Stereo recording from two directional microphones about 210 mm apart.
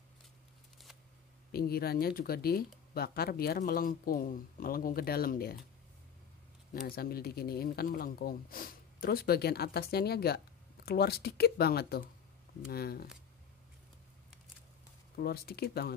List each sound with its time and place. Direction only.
1.5 s speech: 45° left (ahead or behind)
6.7 s speech: 45° left (ahead or behind)
15.1 s speech: 45° left (ahead or behind)